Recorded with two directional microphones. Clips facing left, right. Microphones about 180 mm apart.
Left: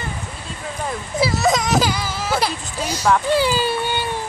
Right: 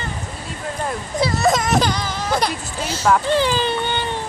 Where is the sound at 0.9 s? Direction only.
5° left (ahead or behind).